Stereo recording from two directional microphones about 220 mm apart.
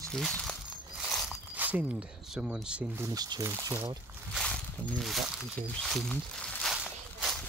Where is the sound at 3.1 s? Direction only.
15° right (ahead or behind).